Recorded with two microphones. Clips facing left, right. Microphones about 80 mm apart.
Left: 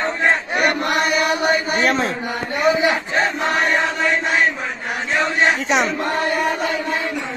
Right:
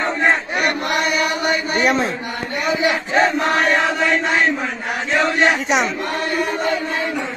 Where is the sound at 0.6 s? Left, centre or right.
Left.